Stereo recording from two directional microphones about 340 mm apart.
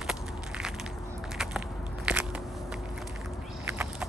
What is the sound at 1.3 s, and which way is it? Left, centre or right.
Biting, centre.